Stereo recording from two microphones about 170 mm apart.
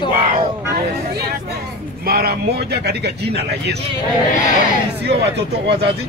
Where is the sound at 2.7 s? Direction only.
75° right (ahead or behind).